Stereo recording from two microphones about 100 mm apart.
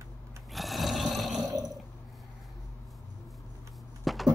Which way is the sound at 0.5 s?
Centre (ahead or behind).